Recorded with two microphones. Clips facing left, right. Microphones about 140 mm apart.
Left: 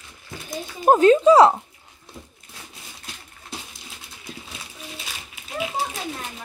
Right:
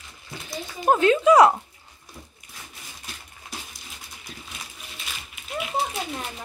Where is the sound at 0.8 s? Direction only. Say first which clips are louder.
Left 5 dB; 40° left (ahead or behind).